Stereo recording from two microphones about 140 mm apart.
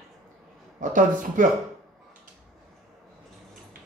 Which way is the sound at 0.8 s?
70° right (ahead or behind).